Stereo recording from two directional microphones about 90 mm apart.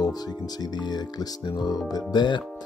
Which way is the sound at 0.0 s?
50° left (ahead or behind).